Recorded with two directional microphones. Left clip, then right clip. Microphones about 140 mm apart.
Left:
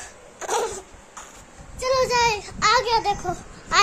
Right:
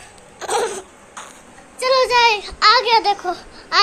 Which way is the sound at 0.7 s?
Centre (ahead or behind).